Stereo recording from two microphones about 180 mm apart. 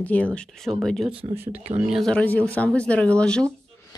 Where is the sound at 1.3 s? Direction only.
10° right (ahead or behind).